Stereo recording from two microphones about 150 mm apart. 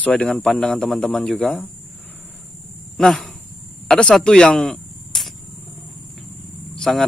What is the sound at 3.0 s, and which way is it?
Speech, centre (ahead or behind).